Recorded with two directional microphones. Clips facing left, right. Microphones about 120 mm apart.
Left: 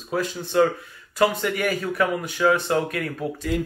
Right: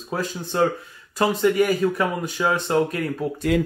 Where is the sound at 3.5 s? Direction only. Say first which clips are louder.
Right 5 dB; 90° right.